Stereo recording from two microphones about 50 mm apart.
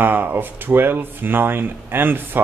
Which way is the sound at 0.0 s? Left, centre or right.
Right.